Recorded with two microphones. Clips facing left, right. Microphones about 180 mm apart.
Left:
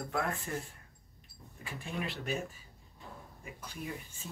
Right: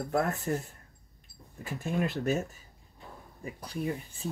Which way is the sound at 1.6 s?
45° right (ahead or behind).